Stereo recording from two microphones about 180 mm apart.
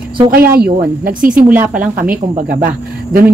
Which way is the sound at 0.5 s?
55° right (ahead or behind).